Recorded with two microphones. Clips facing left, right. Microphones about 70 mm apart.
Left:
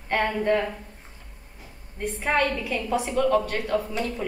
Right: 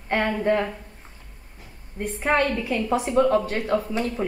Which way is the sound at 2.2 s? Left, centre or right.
Right.